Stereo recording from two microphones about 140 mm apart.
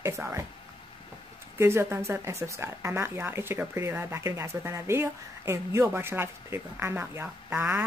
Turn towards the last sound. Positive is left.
turn(degrees=-15)  # may be behind; listen again after turning